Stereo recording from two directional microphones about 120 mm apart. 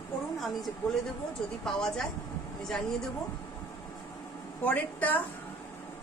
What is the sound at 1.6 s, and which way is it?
Speech, 5° left (ahead or behind).